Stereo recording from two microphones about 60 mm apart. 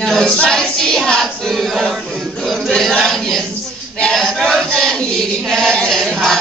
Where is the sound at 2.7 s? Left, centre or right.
Centre.